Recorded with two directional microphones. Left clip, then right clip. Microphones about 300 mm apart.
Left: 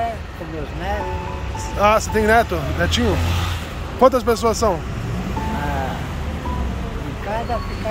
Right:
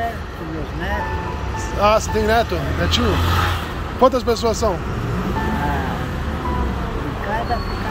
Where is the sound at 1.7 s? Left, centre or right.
Centre.